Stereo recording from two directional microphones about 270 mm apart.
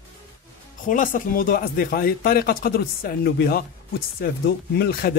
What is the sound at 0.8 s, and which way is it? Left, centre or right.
Speech, left.